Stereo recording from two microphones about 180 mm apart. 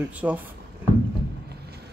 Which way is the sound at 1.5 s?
65° right (ahead or behind).